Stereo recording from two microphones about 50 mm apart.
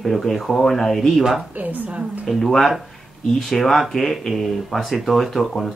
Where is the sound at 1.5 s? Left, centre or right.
Right.